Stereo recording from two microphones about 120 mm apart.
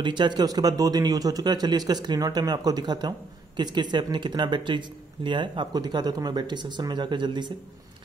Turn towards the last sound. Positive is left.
turn(degrees=-40)  # may be behind; listen again after turning